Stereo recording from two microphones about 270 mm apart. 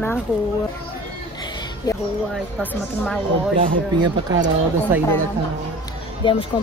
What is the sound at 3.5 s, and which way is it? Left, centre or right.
Speech, centre.